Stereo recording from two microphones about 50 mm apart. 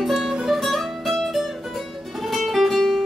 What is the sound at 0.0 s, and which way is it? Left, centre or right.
Music, centre.